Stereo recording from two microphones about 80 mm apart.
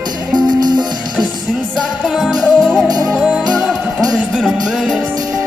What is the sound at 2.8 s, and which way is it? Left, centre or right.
Music, right.